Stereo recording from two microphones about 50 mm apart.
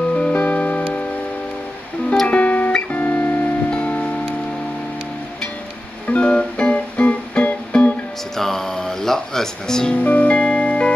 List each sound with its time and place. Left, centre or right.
0.1 s music: left
2.2 s music: left
3.7 s music: left
6.0 s music: left
8.4 s music: centre
9.9 s music: left